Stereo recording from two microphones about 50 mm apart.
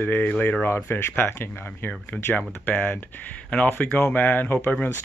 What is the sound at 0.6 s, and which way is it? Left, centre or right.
Speech, left.